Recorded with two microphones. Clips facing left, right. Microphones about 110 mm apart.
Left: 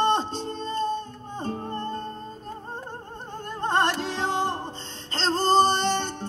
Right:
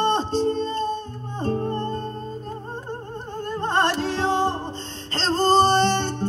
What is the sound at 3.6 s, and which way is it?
Music, 15° left (ahead or behind).